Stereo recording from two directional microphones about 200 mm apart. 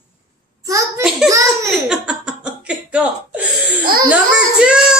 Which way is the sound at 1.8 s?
5° right (ahead or behind).